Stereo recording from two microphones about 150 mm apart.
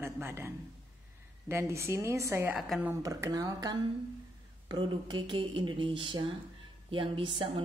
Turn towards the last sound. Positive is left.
turn(degrees=-35)  # may be behind; listen again after turning